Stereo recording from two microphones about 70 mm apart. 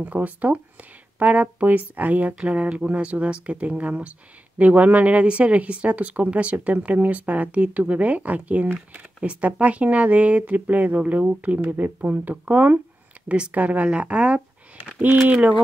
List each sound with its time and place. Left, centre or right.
0.0 s speech: right